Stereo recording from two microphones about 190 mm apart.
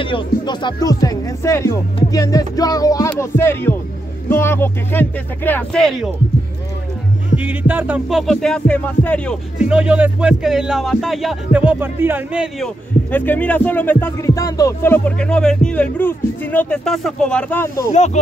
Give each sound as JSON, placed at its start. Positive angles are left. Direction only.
{"t": 0.0, "sound": "music", "side_deg": 25}
{"t": 4.3, "sound": "speech", "side_deg": 10}
{"t": 7.3, "sound": "speech", "side_deg": -10}
{"t": 9.6, "sound": "speech", "side_deg": -5}
{"t": 17.9, "sound": "speech", "side_deg": 35}